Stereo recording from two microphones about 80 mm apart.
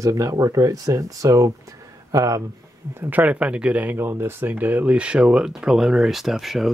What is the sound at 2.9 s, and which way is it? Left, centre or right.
Speech, right.